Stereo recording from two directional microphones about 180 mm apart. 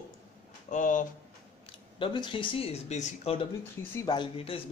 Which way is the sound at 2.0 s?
25° left (ahead or behind).